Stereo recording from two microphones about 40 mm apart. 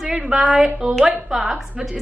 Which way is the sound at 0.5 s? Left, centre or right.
Right.